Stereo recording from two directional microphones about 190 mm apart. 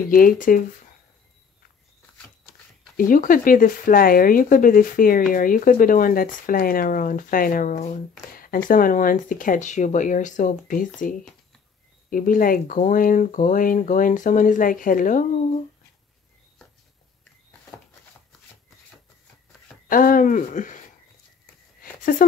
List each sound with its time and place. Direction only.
0.1 s speech: 50° left (ahead or behind)
3.0 s speech: 45° left (ahead or behind)
19.9 s speech: 45° left (ahead or behind)